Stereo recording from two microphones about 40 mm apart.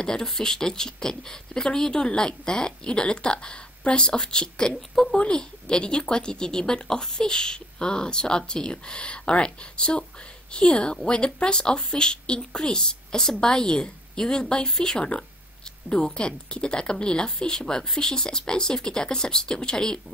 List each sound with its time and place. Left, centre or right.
0.0 s a woman's voice: centre